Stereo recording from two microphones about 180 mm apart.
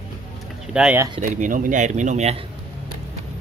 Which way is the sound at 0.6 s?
5° right (ahead or behind).